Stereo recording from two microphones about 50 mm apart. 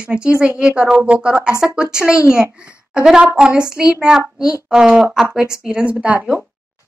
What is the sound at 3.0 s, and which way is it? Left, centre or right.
Speech, centre.